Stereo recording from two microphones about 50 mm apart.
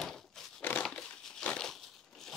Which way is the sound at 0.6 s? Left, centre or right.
Left.